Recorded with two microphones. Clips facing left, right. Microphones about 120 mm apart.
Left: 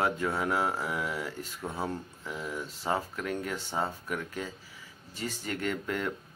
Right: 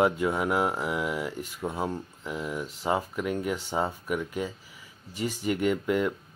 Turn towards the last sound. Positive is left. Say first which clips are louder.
# right 7 dB
turn(degrees=-10)  # may be behind; listen again after turning